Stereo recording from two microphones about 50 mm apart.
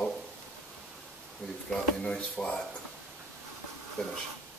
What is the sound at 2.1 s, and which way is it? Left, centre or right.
Speech, centre.